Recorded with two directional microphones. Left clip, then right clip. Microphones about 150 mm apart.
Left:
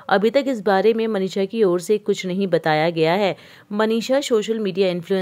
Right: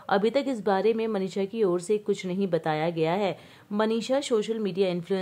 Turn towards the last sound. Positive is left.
turn(degrees=30)  # may be behind; listen again after turning